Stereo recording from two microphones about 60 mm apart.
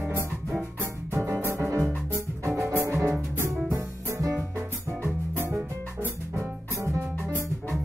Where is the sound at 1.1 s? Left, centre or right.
Right.